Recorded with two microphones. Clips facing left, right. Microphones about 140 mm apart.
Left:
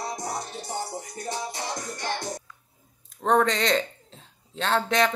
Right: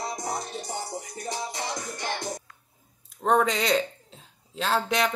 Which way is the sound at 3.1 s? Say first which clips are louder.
Left 1 dB; centre (ahead or behind).